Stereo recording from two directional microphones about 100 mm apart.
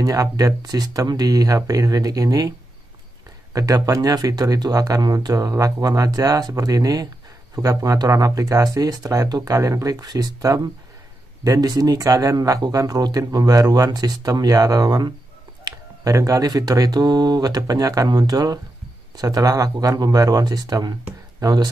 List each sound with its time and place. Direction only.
0.0 s speech: 35° right (ahead or behind)
3.5 s speech: 35° right (ahead or behind)